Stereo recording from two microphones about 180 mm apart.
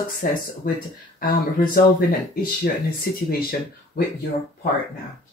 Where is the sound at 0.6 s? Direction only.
55° left (ahead or behind).